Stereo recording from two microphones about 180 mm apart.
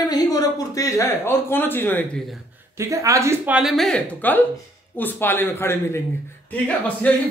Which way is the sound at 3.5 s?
Centre (ahead or behind).